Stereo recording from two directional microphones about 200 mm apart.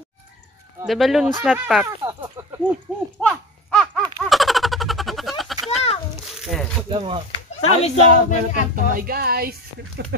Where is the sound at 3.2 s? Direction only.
5° left (ahead or behind).